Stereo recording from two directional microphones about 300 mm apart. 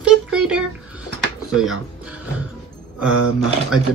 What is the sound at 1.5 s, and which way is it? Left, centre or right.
Music, centre.